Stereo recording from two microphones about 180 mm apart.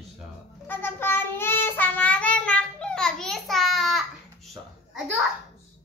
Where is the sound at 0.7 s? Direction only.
10° left (ahead or behind).